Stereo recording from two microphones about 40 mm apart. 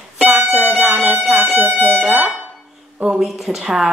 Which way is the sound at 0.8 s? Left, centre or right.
Right.